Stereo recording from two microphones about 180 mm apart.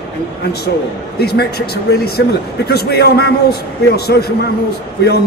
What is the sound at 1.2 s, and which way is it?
A man's voice, 65° left (ahead or behind).